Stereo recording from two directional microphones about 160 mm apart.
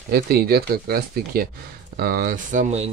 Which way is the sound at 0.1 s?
75° right (ahead or behind).